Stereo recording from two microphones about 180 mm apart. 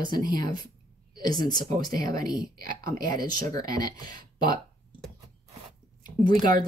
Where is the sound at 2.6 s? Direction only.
55° right (ahead or behind).